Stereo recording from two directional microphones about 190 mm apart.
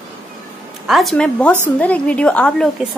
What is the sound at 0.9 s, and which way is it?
A woman's voice, centre (ahead or behind).